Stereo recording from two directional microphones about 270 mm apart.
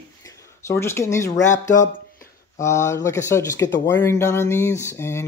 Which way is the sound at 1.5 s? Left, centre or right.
Left.